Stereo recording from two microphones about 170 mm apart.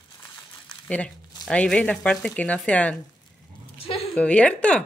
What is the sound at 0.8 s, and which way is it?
Speech, 5° left (ahead or behind).